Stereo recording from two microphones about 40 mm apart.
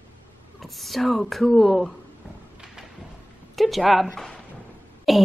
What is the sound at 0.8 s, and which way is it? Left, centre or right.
A woman's voice, centre.